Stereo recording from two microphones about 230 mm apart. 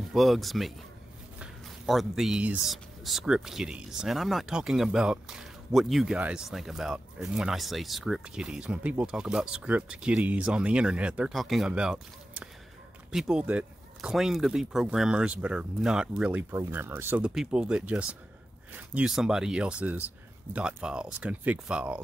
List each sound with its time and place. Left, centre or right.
0.1 s speech: centre